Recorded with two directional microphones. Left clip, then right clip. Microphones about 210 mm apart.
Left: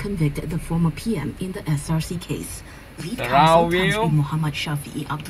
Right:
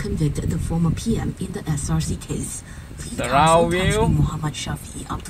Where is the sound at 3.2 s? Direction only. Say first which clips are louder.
Even; 15° right (ahead or behind).